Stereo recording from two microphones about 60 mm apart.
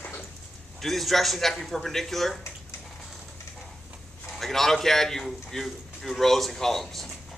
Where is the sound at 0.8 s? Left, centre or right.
Centre.